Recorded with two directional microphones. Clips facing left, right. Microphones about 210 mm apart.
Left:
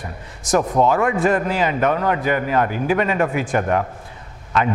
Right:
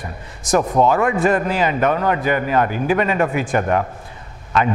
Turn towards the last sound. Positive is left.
turn(degrees=-20)  # may be behind; listen again after turning